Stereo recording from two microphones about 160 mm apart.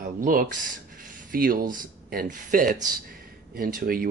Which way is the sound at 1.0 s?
60° right (ahead or behind).